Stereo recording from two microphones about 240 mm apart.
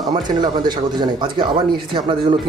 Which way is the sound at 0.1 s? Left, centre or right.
Centre.